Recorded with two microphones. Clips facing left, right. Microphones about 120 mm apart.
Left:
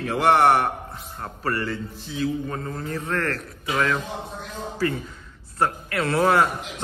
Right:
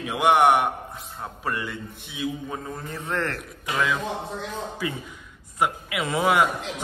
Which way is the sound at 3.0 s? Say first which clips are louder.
Even; 25° right (ahead or behind).